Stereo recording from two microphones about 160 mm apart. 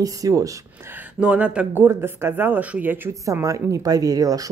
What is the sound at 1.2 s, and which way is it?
Speech, 5° right (ahead or behind).